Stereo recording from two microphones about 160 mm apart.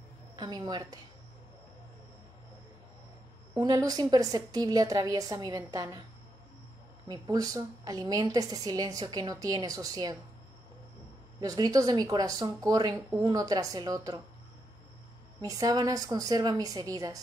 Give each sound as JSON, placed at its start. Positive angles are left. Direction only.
{"t": 0.4, "sound": "a woman's voice", "side_deg": -25}
{"t": 3.5, "sound": "a woman's voice", "side_deg": -25}
{"t": 7.1, "sound": "a woman's voice", "side_deg": -25}
{"t": 11.3, "sound": "a woman's voice", "side_deg": -25}
{"t": 15.4, "sound": "a woman's voice", "side_deg": -20}